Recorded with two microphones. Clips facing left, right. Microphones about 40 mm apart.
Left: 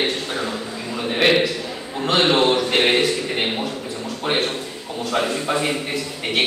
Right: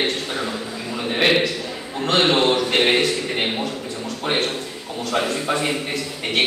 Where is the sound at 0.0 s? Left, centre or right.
Centre.